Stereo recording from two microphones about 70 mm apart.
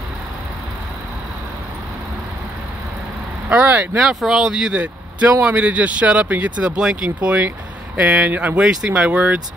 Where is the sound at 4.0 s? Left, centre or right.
Centre; by 8.6 s right.